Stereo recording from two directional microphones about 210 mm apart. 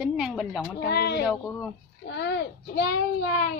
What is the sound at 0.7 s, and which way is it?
A child's voice, 50° left (ahead or behind).